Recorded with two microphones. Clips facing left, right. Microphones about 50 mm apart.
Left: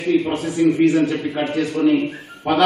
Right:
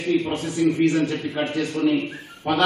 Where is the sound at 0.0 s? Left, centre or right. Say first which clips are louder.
Left 4 dB; centre.